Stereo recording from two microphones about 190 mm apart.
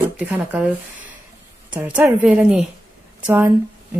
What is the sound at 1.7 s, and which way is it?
Music, 5° right (ahead or behind).